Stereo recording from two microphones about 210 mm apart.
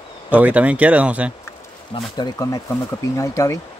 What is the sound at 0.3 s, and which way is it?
Speech, 5° right (ahead or behind).